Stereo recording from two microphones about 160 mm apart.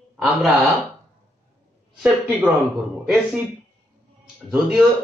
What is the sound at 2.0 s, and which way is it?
Speech, 15° right (ahead or behind).